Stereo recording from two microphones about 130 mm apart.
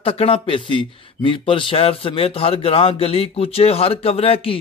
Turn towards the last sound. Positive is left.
turn(degrees=45)  # may be behind; listen again after turning